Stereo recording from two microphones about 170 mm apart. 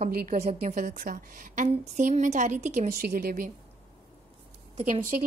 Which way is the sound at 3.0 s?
65° right (ahead or behind).